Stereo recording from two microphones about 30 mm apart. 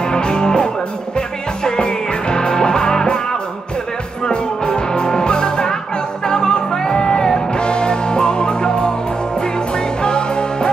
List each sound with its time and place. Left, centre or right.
0.0 s music: left